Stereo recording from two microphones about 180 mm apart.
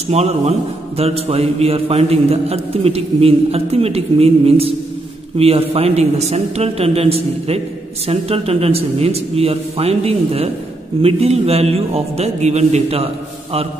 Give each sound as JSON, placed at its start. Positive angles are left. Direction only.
{"t": 0.1, "sound": "a man's voice", "side_deg": -35}